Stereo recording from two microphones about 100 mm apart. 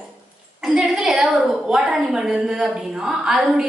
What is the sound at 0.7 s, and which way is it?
A woman's voice, 5° right (ahead or behind).